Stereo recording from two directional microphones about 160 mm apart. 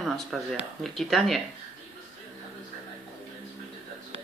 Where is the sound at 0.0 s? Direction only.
Centre (ahead or behind).